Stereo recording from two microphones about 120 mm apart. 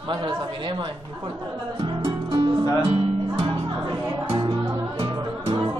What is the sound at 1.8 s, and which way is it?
Music, 45° right (ahead or behind).